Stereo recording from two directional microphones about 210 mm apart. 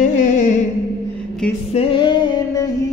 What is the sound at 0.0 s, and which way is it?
Music, 35° left (ahead or behind).